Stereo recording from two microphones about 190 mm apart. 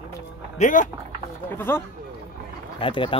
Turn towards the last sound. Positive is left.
turn(degrees=30)  # may be behind; listen again after turning